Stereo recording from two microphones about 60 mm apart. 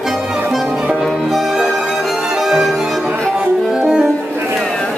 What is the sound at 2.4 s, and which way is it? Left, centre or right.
Music, centre.